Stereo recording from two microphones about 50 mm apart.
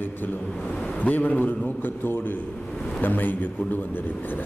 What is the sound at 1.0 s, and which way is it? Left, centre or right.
A man's voice, left.